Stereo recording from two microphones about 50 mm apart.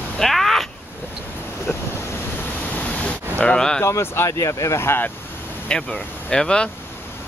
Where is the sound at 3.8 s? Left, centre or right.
Left.